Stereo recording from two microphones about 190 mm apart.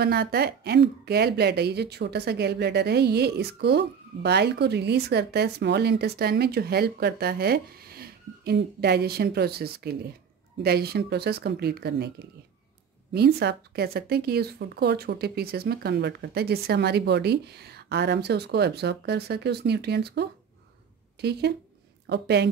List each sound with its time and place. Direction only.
0.0 s a woman's voice: 55° right (ahead or behind)
13.1 s a woman's voice: 60° right (ahead or behind)